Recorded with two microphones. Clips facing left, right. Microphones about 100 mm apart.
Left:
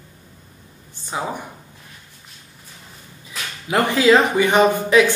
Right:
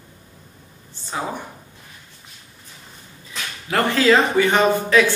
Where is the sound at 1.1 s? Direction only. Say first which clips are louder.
Left 1 dB; 15° left (ahead or behind).